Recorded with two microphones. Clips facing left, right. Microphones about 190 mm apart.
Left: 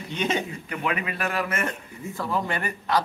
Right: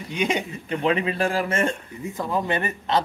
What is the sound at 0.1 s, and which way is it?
Speech, 15° right (ahead or behind).